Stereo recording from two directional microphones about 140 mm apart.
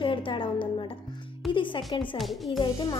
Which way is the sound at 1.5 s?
35° left (ahead or behind).